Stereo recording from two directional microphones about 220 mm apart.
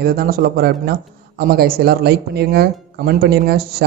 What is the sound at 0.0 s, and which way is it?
Speech, 45° right (ahead or behind).